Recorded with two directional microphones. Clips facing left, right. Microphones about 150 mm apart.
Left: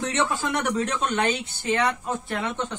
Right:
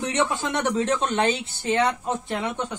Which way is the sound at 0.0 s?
15° right (ahead or behind).